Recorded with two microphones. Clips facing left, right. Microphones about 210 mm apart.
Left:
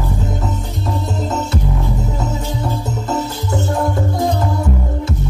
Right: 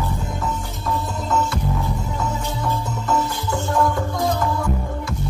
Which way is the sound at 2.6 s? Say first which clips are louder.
Left 3 dB; 25° left (ahead or behind).